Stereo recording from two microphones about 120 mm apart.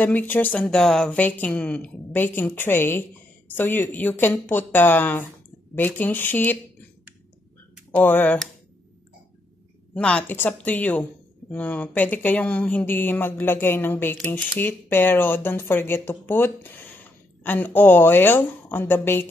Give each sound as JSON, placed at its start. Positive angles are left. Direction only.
{"t": 0.0, "sound": "speech", "side_deg": 15}
{"t": 7.9, "sound": "speech", "side_deg": 15}
{"t": 9.9, "sound": "speech", "side_deg": 10}